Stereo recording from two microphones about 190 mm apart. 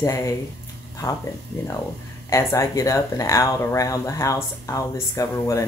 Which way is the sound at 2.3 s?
15° left (ahead or behind).